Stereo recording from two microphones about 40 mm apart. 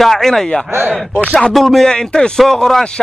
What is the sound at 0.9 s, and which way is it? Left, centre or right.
Speech, right.